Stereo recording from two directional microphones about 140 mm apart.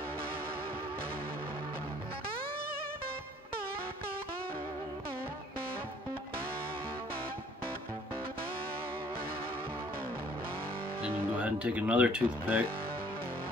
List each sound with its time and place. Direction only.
11.4 s speech: 10° right (ahead or behind)